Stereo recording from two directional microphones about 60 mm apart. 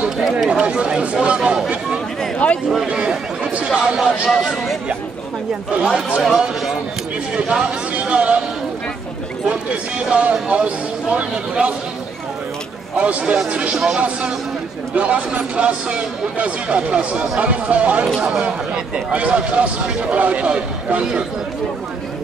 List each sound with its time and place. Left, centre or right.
0.5 s speech: centre
2.3 s speech: left
2.9 s speech: centre
5.7 s speech: centre
6.2 s speech: centre
7.9 s a sound: right
9.5 s speech: centre
12.9 s speech: right
15.0 s speech: right